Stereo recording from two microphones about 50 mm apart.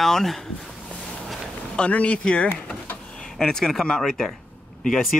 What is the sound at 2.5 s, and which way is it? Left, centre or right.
Vehicle, left.